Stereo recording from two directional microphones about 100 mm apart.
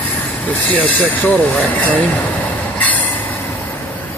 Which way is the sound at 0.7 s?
15° left (ahead or behind).